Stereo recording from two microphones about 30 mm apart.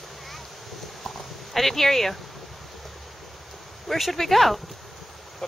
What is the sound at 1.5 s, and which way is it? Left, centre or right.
Speech, centre.